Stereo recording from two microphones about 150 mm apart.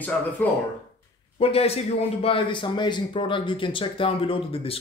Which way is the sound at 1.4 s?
40° left (ahead or behind).